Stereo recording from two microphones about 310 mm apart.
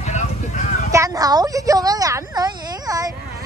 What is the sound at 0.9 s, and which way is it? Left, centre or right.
A woman's voice, centre.